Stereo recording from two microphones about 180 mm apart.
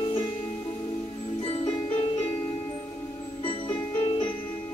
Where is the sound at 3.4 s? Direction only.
30° left (ahead or behind).